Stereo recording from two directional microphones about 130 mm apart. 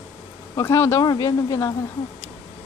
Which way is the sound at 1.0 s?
30° left (ahead or behind).